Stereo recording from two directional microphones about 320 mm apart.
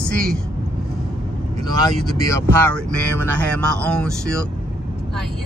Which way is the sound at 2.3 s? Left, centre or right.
Centre.